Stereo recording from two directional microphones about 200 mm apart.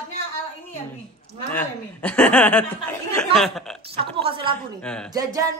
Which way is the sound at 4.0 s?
25° right (ahead or behind).